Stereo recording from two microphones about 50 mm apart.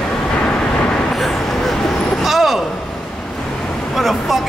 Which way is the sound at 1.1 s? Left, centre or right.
Centre.